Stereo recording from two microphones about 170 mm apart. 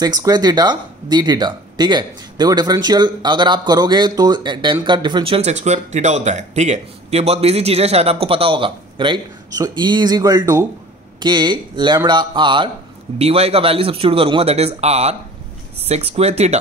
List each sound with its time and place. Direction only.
0.0 s speech: 20° right (ahead or behind); by 16.5 s 40° right (ahead or behind)